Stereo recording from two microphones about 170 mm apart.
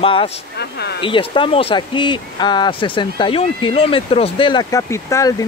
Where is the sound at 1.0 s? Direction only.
30° left (ahead or behind).